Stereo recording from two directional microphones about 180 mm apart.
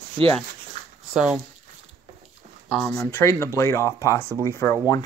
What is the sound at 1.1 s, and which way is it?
Speech, 5° right (ahead or behind).